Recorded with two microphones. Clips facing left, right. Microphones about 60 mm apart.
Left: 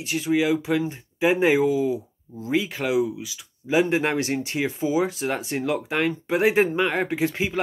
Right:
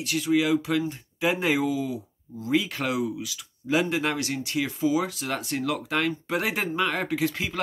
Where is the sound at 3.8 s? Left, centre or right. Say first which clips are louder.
Left 4 dB; left.